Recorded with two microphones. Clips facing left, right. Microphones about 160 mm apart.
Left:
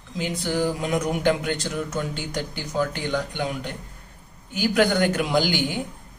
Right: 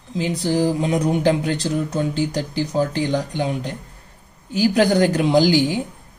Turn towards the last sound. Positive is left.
turn(degrees=-35)  # may be behind; listen again after turning